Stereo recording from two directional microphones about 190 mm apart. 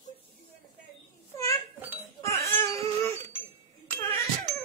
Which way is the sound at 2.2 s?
15° left (ahead or behind).